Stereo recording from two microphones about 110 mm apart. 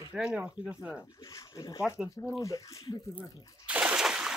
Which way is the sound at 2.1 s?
30° left (ahead or behind).